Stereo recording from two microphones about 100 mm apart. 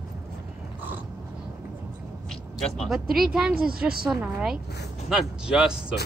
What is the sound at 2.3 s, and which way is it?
Vehicle, 5° left (ahead or behind).